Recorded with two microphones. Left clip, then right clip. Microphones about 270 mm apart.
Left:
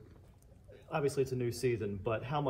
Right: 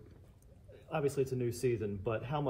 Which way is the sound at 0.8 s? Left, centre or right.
Left.